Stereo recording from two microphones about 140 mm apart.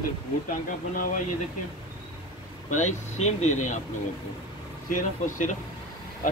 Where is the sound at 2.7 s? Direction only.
55° left (ahead or behind).